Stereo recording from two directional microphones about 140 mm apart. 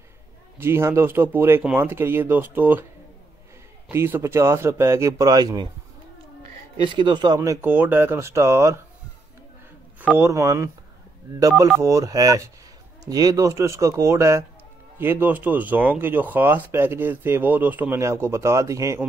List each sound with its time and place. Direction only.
0.6 s speech: 15° right (ahead or behind)
3.9 s a man's voice: 15° right (ahead or behind)
6.9 s speech: 35° right (ahead or behind)
7.3 s a man's voice: 15° right (ahead or behind)
10.1 s a man's voice: 20° right (ahead or behind)